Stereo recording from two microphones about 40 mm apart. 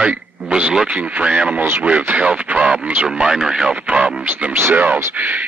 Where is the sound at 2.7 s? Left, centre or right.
Right.